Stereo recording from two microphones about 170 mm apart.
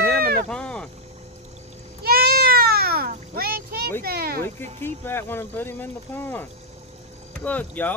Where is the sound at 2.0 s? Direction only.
65° right (ahead or behind).